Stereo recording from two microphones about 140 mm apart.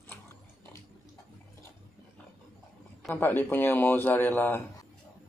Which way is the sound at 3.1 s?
15° left (ahead or behind).